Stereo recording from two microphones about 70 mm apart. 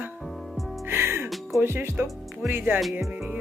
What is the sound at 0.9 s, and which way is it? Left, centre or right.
Music, right.